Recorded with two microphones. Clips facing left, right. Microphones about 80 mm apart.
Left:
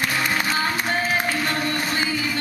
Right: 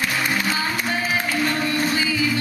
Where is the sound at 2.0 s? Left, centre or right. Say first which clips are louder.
Right 2 dB; left.